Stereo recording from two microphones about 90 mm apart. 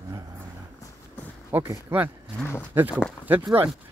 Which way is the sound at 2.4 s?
25° left (ahead or behind).